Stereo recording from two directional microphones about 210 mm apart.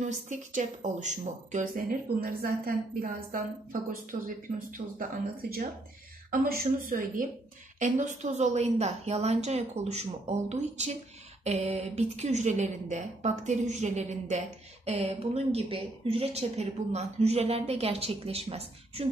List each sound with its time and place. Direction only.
0.0 s speech: 35° right (ahead or behind)
6.3 s a woman's voice: 40° right (ahead or behind)